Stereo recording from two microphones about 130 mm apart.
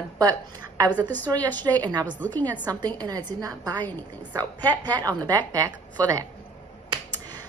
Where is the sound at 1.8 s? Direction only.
35° right (ahead or behind).